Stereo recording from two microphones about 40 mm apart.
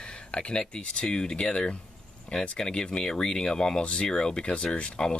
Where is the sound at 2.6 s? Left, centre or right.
Left.